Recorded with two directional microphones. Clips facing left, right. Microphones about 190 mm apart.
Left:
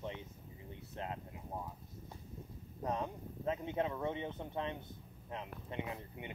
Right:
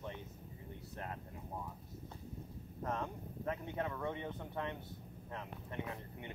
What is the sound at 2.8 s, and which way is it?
Speech, 15° left (ahead or behind).